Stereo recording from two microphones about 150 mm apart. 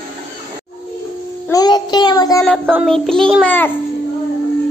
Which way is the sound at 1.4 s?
25° left (ahead or behind).